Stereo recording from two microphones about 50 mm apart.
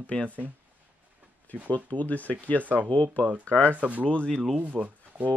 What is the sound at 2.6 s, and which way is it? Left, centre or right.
Speech, right.